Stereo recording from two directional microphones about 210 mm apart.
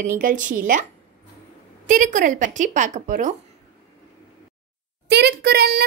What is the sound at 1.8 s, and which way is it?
A child's voice, 40° right (ahead or behind).